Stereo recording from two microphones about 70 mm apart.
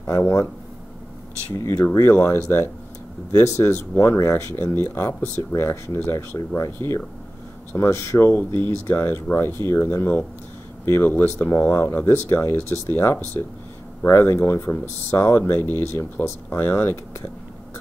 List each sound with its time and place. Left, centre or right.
1.6 s speech: left
3.3 s speech: left